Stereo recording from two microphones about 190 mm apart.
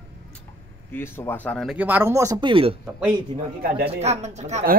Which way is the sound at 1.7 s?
10° right (ahead or behind).